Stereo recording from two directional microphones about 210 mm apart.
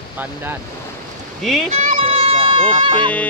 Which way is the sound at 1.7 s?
35° right (ahead or behind).